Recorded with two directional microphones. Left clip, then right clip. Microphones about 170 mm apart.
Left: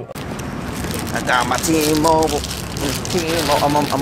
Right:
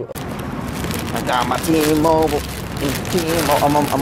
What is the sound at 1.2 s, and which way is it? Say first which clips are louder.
Speech: left 1 dB; 10° right (ahead or behind).